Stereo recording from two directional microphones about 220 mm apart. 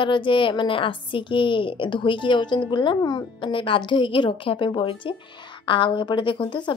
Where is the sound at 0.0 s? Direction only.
20° left (ahead or behind).